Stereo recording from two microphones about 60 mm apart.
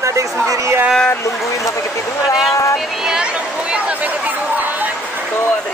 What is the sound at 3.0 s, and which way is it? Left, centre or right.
Chatter, centre.